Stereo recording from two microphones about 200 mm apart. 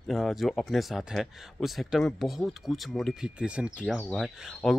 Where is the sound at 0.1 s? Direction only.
Centre (ahead or behind).